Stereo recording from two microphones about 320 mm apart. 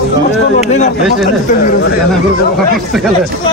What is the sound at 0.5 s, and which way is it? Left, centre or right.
A man's voice, left.